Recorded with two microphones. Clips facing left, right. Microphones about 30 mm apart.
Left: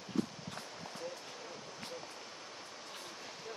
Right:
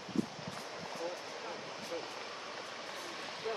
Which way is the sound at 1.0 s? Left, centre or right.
Right.